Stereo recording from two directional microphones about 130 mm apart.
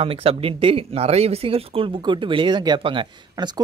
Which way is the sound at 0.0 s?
45° right (ahead or behind).